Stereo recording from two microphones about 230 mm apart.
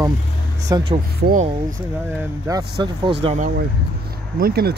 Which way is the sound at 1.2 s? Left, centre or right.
Right.